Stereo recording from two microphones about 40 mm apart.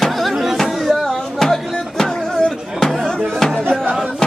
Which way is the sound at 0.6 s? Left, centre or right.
Centre.